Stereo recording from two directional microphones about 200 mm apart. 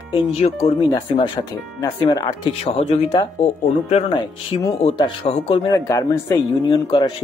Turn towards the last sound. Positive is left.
turn(degrees=25)  # may be behind; listen again after turning